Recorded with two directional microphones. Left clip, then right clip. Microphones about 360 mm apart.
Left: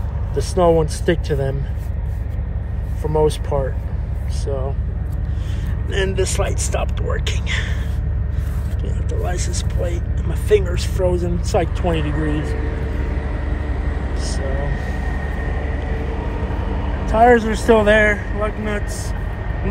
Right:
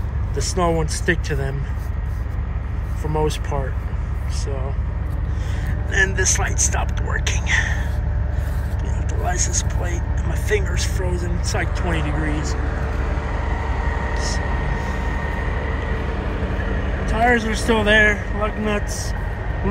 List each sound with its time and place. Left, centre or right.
0.4 s speech: centre
3.5 s speech: centre
5.9 s speech: centre
9.2 s speech: centre
15.6 s vehicle: right
17.0 s speech: centre